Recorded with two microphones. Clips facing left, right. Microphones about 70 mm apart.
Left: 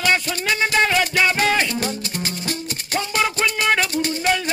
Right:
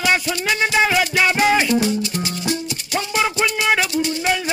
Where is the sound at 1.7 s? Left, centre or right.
Left.